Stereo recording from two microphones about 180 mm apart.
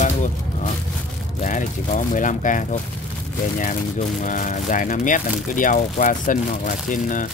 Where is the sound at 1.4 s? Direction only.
45° left (ahead or behind).